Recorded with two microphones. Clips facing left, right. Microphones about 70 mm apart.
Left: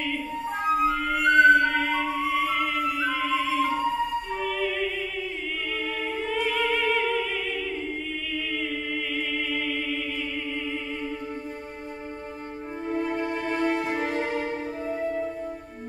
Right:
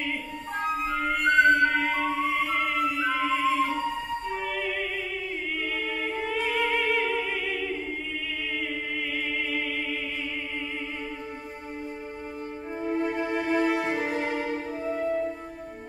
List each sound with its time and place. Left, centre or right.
0.7 s music: centre
6.5 s music: centre
12.8 s music: centre